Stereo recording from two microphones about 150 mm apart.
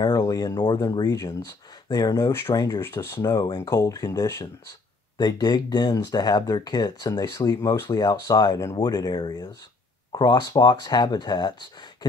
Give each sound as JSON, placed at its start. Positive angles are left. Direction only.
{"t": 0.0, "sound": "speech", "side_deg": 25}